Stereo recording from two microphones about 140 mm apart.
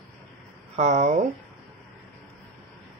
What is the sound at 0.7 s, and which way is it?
Speech, 50° right (ahead or behind).